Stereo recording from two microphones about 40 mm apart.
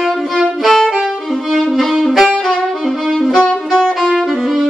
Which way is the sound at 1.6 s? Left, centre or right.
Centre.